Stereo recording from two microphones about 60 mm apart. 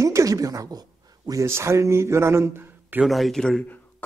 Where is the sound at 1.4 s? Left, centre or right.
Right.